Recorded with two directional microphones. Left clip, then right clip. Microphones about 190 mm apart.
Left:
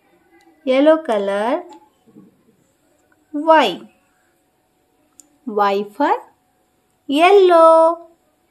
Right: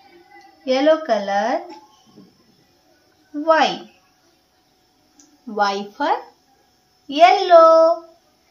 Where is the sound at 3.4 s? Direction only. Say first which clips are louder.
Left 3 dB; 75° left (ahead or behind).